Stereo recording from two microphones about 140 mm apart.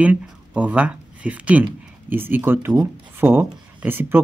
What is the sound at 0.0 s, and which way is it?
Speech, 10° right (ahead or behind).